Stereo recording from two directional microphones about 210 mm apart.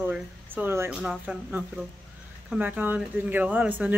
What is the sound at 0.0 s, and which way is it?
Speech, 10° right (ahead or behind).